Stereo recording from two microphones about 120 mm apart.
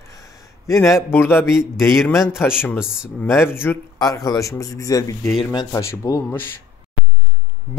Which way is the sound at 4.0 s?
30° left (ahead or behind).